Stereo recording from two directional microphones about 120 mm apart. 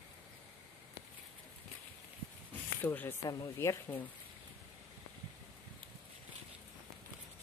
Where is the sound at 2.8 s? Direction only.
15° left (ahead or behind).